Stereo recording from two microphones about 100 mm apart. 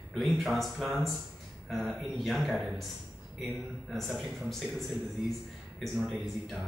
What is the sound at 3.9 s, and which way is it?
A man's voice, 5° left (ahead or behind).